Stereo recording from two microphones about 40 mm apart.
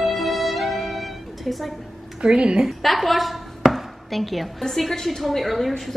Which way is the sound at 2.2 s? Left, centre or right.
Right.